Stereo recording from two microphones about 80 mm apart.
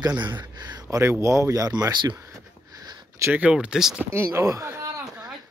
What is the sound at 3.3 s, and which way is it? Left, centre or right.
Speech, centre.